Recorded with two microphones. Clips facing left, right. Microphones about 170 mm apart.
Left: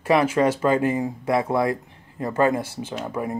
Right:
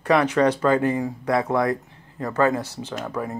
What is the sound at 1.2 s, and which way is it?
Speech, 25° left (ahead or behind).